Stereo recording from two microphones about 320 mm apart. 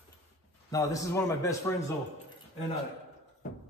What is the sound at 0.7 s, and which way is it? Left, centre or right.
A man's voice, centre.